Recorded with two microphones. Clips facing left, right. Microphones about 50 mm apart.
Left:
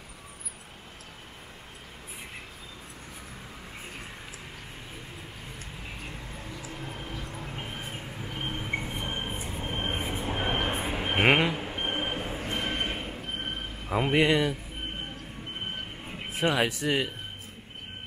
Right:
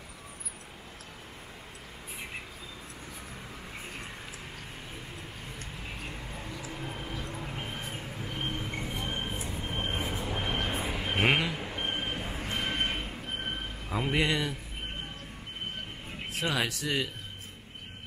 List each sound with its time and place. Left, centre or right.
5.9 s a sound: centre; by 11.1 s left
11.1 s vehicle: left
11.5 s vehicle: centre
12.2 s a sound: centre
13.9 s speech: centre
16.3 s speech: left